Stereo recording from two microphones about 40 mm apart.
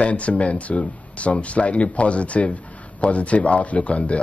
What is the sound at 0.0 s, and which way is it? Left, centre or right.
Speech, left.